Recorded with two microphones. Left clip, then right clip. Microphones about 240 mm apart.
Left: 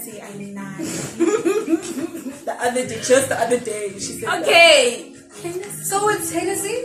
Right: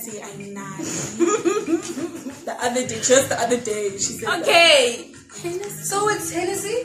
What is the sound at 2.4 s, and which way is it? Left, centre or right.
Speech, centre.